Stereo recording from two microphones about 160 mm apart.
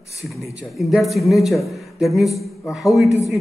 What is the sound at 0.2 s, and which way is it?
A woman's voice, centre (ahead or behind).